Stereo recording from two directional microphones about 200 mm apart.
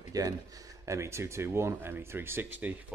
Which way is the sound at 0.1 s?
20° right (ahead or behind).